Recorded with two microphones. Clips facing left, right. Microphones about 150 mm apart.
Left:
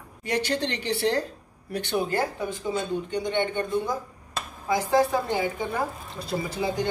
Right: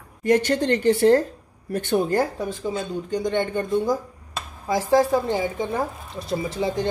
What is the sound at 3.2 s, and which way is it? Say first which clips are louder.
Speech: right 4 dB; 40° right (ahead or behind).